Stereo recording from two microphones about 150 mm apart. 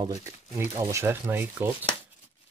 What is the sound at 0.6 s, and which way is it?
Speech, 15° right (ahead or behind).